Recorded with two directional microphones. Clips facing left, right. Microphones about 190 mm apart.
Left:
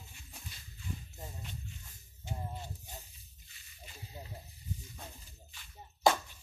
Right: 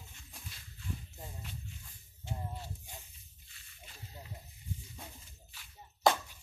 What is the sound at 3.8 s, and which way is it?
Snake, 15° left (ahead or behind).